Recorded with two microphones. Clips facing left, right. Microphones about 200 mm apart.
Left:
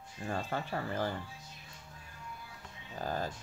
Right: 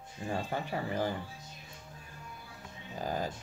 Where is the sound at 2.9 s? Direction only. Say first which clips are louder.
Right 1 dB; 15° right (ahead or behind).